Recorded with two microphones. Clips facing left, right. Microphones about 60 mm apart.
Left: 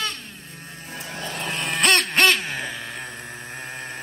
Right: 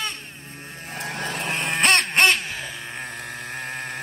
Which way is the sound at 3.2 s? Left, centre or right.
Right.